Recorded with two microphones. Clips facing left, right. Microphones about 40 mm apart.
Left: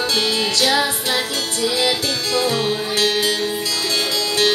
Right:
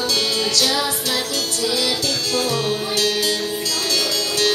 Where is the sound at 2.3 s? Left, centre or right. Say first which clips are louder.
Left 3 dB; left.